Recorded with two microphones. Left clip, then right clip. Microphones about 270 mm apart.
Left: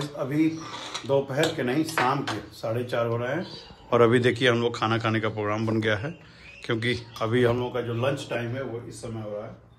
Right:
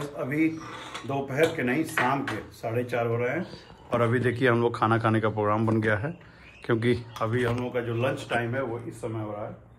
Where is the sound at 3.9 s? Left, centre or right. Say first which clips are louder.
Left 6 dB; left.